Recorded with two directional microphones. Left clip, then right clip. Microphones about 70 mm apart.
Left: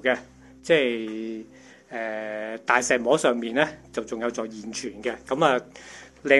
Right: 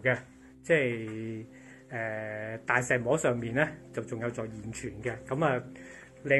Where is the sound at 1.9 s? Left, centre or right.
Centre.